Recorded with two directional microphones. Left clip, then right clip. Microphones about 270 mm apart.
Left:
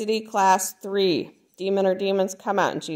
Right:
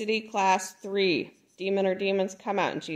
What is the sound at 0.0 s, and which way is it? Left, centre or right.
Speech, left.